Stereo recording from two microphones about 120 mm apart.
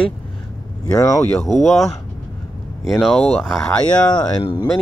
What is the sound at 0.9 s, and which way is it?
Speech, 25° left (ahead or behind).